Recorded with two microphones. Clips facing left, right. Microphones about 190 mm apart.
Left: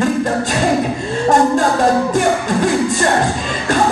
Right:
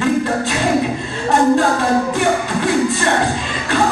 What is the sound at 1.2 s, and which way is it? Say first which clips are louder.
Music: even; 45° left (ahead or behind).